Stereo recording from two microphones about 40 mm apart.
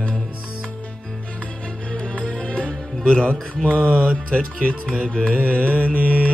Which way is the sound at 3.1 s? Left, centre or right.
Left.